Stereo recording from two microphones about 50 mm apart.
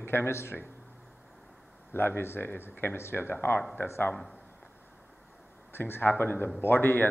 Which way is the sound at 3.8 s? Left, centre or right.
Left.